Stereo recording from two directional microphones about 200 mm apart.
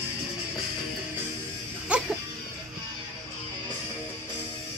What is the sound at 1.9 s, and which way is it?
Music, 5° right (ahead or behind).